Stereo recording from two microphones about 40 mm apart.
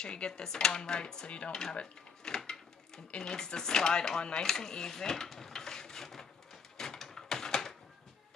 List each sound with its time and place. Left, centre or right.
0.0 s speech: left
1.5 s speech: centre
2.2 s a sound: centre